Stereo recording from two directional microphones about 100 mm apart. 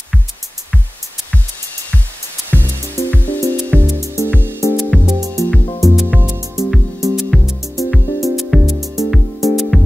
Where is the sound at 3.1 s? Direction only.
20° left (ahead or behind).